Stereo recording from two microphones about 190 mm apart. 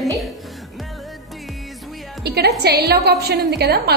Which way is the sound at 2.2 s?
60° right (ahead or behind).